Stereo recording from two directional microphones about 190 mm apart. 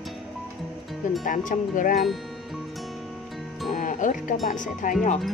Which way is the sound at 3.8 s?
45° left (ahead or behind).